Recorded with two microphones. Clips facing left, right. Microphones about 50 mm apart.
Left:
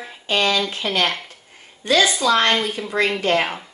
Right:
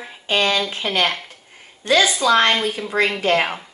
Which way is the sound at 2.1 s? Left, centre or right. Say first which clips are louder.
Right 1 dB; centre.